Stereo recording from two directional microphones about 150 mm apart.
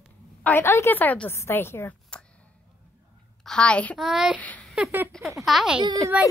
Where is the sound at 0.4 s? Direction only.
10° left (ahead or behind).